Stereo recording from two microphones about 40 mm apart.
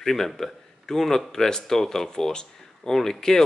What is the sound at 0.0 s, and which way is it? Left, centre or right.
Speech, centre.